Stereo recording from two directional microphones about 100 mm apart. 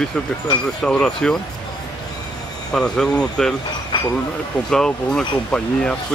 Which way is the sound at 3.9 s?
50° left (ahead or behind).